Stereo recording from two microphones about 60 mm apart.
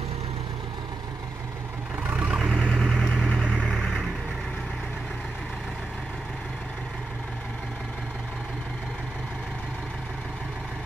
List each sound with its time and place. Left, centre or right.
2.0 s vehicle: right
2.7 s vehicle: centre